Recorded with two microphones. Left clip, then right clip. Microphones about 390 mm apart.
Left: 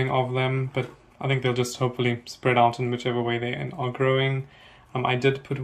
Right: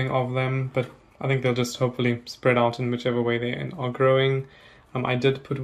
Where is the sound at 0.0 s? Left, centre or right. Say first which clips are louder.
Left 1 dB; centre.